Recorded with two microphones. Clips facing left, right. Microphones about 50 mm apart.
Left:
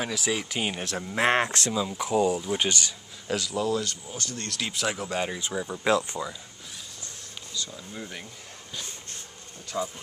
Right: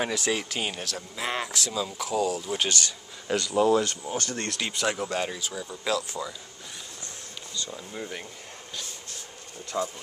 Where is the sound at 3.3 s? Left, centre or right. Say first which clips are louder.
Right 2 dB; centre.